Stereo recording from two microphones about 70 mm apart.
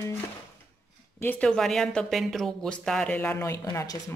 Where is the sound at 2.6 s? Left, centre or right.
Centre.